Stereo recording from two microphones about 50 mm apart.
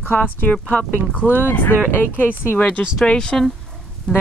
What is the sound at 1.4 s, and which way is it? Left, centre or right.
Speech, left.